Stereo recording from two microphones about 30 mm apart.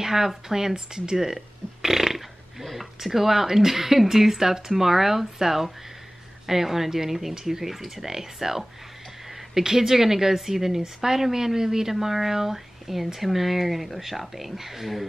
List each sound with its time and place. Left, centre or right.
0.0 s speech: centre
1.3 s burping: centre
2.6 s speech: centre